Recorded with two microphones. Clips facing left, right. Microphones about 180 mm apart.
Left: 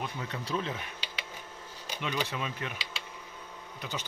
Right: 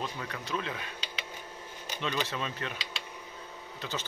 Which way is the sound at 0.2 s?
30° left (ahead or behind).